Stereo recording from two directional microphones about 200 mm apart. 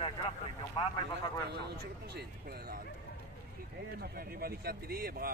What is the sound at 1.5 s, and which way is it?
Speech, 55° right (ahead or behind).